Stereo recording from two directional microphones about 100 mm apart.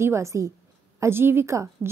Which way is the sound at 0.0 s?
30° right (ahead or behind).